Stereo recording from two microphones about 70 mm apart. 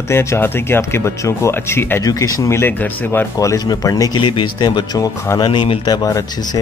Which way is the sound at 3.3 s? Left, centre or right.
Left.